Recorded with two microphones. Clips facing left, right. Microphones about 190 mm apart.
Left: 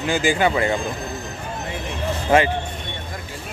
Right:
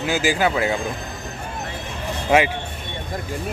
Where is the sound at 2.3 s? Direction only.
5° right (ahead or behind).